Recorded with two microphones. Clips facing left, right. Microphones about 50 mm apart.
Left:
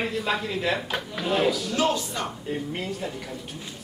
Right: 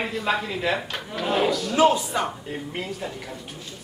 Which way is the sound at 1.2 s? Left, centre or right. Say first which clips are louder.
Right 2 dB; centre.